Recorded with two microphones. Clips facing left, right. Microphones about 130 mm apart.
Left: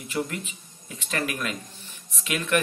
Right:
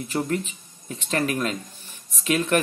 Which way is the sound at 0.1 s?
40° right (ahead or behind).